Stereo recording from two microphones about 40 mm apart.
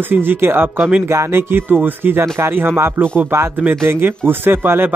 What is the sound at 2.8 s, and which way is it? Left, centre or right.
Speech, right.